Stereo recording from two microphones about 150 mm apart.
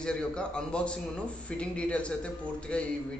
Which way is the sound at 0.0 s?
5° left (ahead or behind).